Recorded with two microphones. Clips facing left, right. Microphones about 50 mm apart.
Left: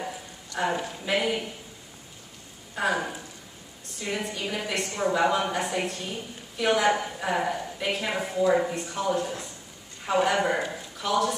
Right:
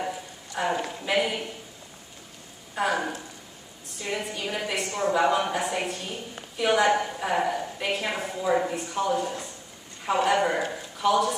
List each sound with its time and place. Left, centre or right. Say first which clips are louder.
0.5 s a sound: even; centre
1.0 s a woman's voice: even; centre
2.8 s a woman's voice: right 1 dB; centre